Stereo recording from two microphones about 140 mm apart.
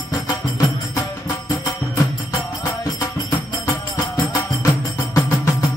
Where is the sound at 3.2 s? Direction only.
25° left (ahead or behind).